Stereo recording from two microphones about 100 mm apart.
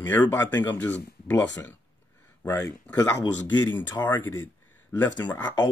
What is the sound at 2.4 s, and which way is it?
Speech, 30° left (ahead or behind).